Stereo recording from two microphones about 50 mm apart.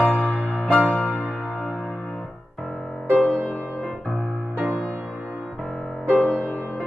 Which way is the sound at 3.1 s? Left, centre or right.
Left.